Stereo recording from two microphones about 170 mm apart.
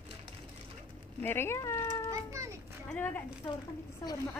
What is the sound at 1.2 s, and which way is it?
Speech, 15° left (ahead or behind).